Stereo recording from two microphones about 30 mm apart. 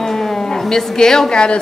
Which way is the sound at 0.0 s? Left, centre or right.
Centre.